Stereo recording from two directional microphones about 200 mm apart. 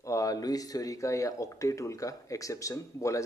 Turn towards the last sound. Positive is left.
turn(degrees=15)  # may be behind; listen again after turning